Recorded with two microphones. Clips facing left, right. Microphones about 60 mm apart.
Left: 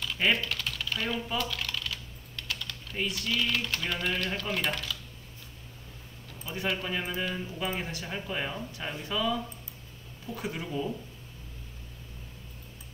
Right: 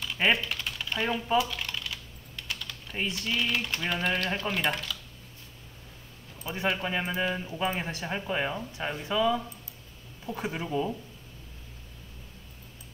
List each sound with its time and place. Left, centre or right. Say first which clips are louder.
0.0 s typing: right 2 dB; centre
1.0 s speech: right 7 dB; right
1.4 s typing: right 1 dB; centre
3.0 s speech: even; right
3.4 s speech: right 1 dB; centre
6.4 s speech: right 3 dB; right